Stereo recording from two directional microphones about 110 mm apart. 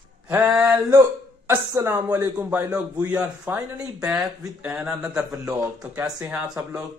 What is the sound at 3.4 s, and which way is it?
Speech, 30° right (ahead or behind).